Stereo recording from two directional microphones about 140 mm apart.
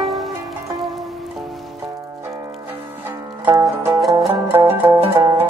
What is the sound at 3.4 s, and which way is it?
Music, 20° right (ahead or behind).